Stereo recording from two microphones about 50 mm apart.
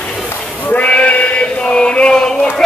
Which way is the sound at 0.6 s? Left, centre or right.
Left.